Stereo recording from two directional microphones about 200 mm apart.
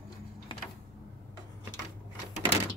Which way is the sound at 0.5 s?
25° left (ahead or behind).